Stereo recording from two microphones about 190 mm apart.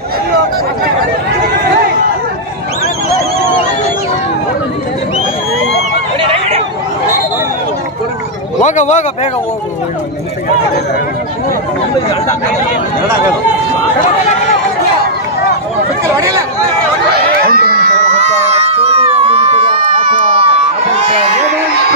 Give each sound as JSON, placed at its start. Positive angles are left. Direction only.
{"t": 6.2, "sound": "hubbub", "side_deg": -30}
{"t": 8.5, "sound": "speech", "side_deg": 40}
{"t": 16.2, "sound": "speech", "side_deg": -15}
{"t": 17.5, "sound": "crowd", "side_deg": -50}
{"t": 18.1, "sound": "a sound", "side_deg": -35}